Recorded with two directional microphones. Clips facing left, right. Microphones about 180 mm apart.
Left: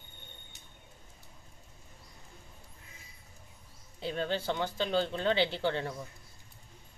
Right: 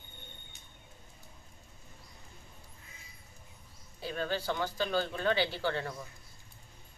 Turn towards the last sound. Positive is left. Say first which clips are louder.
# left 2 dB
turn(degrees=20)  # may be behind; listen again after turning